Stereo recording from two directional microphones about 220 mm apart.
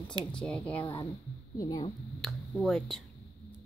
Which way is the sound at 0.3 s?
5° left (ahead or behind).